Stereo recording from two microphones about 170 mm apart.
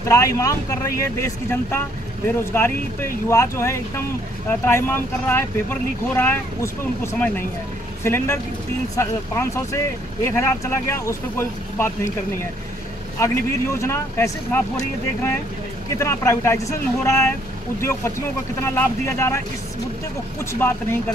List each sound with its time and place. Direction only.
0.1 s speech: 20° left (ahead or behind)
16.0 s speech: 15° left (ahead or behind)